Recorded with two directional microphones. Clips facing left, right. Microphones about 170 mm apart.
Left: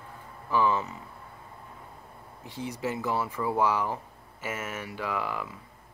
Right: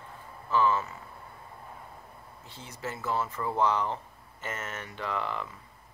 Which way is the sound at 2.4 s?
15° left (ahead or behind).